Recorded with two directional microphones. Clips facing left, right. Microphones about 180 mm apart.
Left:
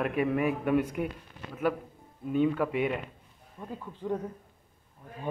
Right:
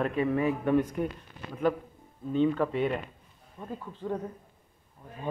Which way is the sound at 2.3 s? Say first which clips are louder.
Right 1 dB; 10° left (ahead or behind).